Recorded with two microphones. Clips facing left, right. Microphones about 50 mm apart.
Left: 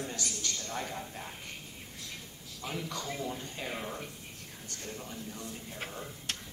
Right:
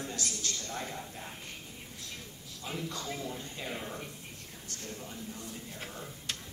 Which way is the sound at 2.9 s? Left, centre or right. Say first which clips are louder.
Left 1 dB; left.